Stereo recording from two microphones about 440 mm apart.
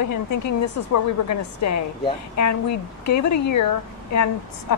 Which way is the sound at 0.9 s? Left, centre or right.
Left.